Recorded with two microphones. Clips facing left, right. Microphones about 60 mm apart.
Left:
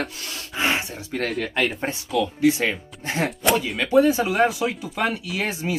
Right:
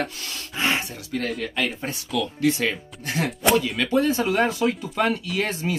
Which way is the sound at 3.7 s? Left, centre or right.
Centre.